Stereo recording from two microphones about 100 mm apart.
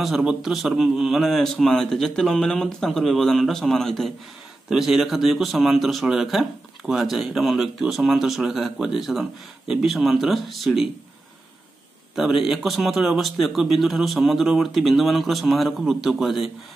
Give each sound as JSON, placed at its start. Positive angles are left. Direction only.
{"t": 0.0, "sound": "a man's voice", "side_deg": -5}
{"t": 12.2, "sound": "a man's voice", "side_deg": -5}